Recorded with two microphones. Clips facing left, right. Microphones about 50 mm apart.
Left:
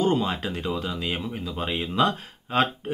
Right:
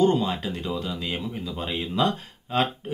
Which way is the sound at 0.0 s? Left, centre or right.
Left.